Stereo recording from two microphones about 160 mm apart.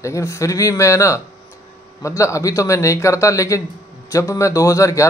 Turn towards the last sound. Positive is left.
turn(degrees=20)  # may be behind; listen again after turning